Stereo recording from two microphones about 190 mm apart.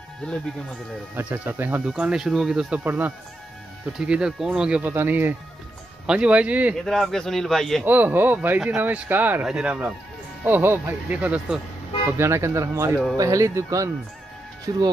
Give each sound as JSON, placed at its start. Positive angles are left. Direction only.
{"t": 0.2, "sound": "speech", "side_deg": 5}
{"t": 1.1, "sound": "speech", "side_deg": -10}
{"t": 7.8, "sound": "speech", "side_deg": -10}
{"t": 12.9, "sound": "speech", "side_deg": 5}
{"t": 13.2, "sound": "speech", "side_deg": -15}